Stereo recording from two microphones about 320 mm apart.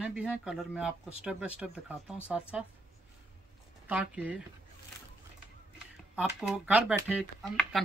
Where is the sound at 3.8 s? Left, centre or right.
Centre.